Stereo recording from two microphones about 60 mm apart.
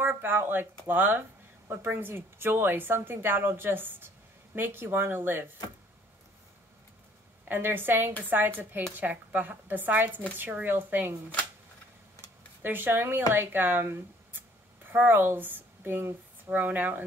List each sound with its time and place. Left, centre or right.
0.0 s a woman's voice: right
7.4 s a woman's voice: right
12.6 s a woman's voice: right
16.4 s speech: right